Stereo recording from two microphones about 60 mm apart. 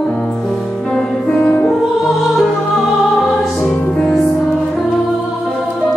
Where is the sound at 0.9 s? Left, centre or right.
Centre.